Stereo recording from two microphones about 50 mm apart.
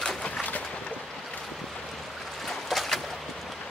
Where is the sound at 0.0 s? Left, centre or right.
Centre.